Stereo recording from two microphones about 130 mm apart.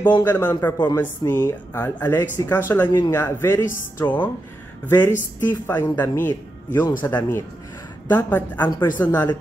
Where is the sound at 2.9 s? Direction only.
30° left (ahead or behind).